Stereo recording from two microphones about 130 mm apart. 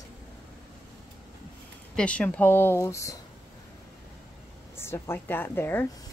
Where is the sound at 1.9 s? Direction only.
10° left (ahead or behind).